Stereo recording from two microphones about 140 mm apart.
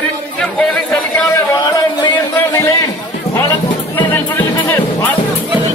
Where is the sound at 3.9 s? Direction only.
15° left (ahead or behind).